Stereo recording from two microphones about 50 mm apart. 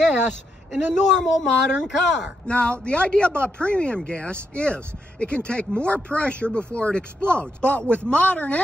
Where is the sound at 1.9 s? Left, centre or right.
Centre.